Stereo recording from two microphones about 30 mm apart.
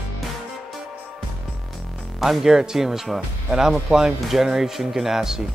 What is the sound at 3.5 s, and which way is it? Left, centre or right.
Speech, right.